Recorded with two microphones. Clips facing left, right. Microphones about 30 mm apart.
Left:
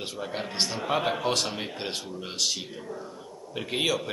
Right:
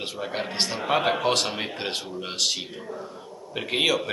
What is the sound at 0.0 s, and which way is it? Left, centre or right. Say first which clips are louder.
Speech: right 3 dB; right.